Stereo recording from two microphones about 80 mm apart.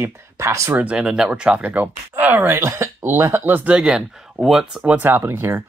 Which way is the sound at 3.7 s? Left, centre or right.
Centre.